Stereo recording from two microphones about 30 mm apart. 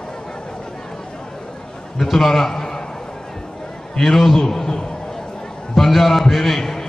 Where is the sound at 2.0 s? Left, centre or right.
Centre.